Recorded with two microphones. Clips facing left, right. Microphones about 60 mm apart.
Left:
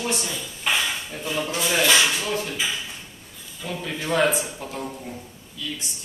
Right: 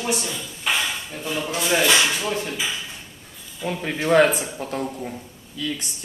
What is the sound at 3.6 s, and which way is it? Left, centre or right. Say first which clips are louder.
Speech: right 5 dB; right.